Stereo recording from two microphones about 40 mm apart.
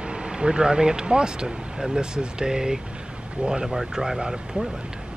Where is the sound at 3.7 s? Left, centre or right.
Centre.